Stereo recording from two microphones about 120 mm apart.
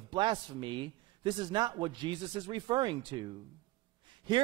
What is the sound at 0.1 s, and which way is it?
A man's voice, 40° right (ahead or behind).